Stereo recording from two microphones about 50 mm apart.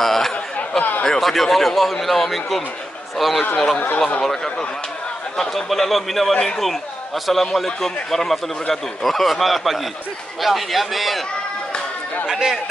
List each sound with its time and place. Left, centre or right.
0.0 s chatter: centre
0.6 s chatter: left
1.0 s a man's voice: centre
3.5 s speech: centre
5.4 s a man's voice: centre
12.3 s speech: centre